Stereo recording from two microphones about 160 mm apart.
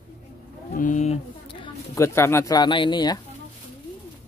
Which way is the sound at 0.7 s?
50° left (ahead or behind).